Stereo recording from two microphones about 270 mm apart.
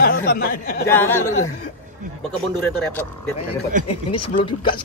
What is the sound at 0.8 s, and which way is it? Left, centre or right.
Speech, centre.